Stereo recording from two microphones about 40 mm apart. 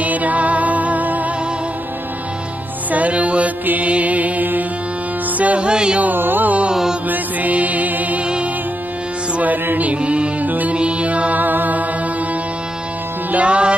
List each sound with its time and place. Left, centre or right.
0.0 s music: right
2.9 s music: right
5.4 s music: right
5.7 s carnatic music: right
6.1 s carnatic music: right
6.7 s music: centre
7.1 s music: right
9.4 s music: right
10.5 s music: right
10.8 s music: right
11.4 s music: right
13.3 s music: right